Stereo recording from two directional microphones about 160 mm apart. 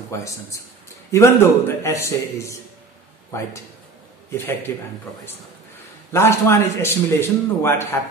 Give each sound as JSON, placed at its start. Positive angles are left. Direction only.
{"t": 0.1, "sound": "a man's voice", "side_deg": 20}
{"t": 6.1, "sound": "a man's voice", "side_deg": 15}